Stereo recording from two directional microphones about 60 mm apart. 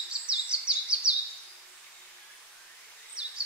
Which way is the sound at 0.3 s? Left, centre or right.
Centre.